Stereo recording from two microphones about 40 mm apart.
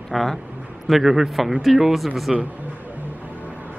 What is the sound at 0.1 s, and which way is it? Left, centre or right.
Speech, centre.